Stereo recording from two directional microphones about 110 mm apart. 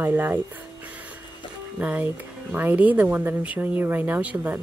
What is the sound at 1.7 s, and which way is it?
Speech, 15° right (ahead or behind).